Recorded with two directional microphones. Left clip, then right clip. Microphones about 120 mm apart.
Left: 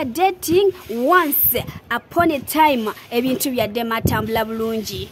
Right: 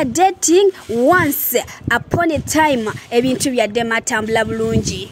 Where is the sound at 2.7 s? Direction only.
15° right (ahead or behind).